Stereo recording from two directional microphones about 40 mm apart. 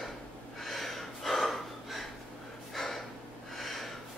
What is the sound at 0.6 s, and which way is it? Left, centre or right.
Gasp, centre.